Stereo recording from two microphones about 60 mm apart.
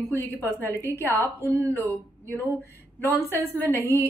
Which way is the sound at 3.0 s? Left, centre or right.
Left.